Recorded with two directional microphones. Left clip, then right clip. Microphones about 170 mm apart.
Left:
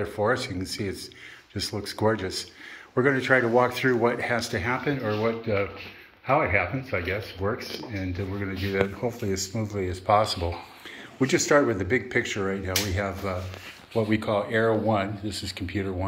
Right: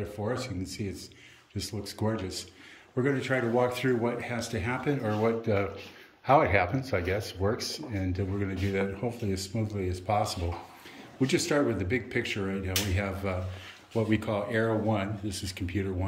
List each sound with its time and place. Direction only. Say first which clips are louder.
0.0 s speech: left 8 dB; centre (ahead or behind)
9.3 s speech: left 4 dB; centre (ahead or behind)